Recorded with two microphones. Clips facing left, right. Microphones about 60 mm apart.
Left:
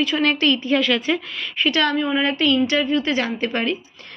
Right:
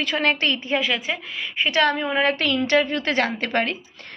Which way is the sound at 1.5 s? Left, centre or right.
Right.